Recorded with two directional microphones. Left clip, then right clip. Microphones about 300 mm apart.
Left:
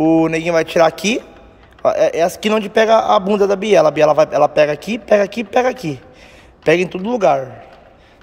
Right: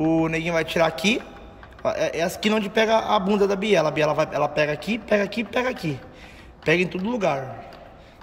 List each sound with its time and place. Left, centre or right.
0.0 s speech: centre